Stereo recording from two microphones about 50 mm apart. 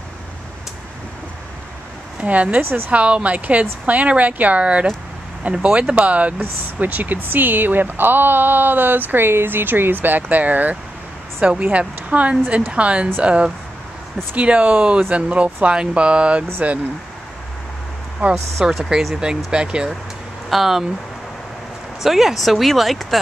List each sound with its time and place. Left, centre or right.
2.1 s speech: right
18.6 s speech: centre
20.4 s speech: centre
22.0 s speech: centre